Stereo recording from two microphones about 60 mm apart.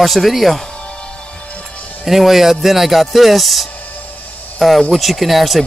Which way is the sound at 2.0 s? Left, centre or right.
Centre.